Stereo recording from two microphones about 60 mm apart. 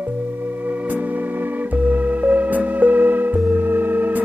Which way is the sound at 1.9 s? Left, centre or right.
Right.